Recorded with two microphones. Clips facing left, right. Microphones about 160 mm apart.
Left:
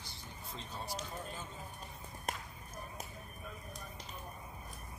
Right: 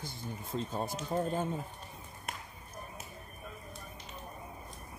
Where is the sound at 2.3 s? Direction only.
35° left (ahead or behind).